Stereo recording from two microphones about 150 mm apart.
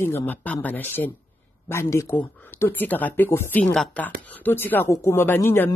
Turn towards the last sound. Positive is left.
turn(degrees=15)  # may be behind; listen again after turning